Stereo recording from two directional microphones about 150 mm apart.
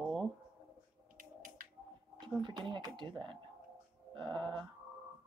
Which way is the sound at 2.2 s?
30° right (ahead or behind).